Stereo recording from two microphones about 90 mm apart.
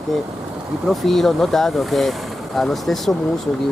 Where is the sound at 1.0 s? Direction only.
5° left (ahead or behind).